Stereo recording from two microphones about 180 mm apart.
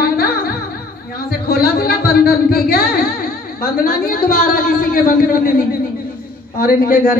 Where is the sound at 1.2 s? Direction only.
60° left (ahead or behind).